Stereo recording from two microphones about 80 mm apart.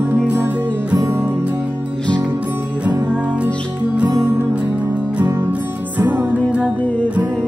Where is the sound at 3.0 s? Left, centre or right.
Centre.